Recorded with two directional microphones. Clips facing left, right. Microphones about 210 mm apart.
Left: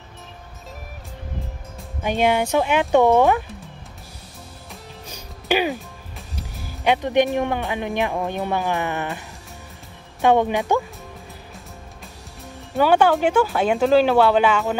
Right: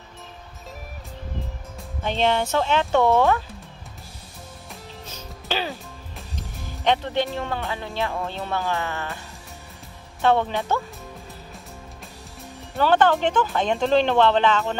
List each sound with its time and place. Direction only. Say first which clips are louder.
2.0 s speech: left 3 dB; 10° left (ahead or behind)
5.0 s music: left 6 dB; 15° left (ahead or behind)
6.1 s speech: left 1 dB; 10° left (ahead or behind)
10.2 s speech: left 3 dB; 15° left (ahead or behind)
12.8 s speech: left 2 dB; 10° left (ahead or behind)